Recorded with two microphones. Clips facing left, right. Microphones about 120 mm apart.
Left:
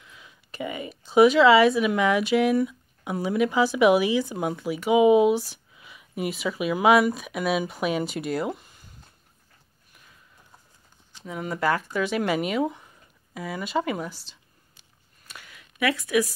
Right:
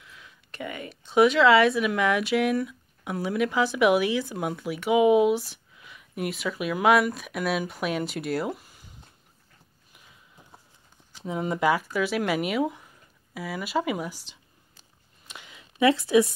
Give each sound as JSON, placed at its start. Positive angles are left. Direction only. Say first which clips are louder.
{"t": 0.0, "sound": "speech", "louder": "even", "side_deg": 0}
{"t": 11.2, "sound": "speech", "louder": "right 2 dB", "side_deg": -25}
{"t": 15.2, "sound": "a sound", "louder": "right 1 dB", "side_deg": -20}